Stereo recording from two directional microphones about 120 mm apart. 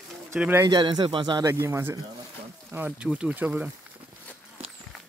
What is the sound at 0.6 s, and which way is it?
Speech, 35° right (ahead or behind).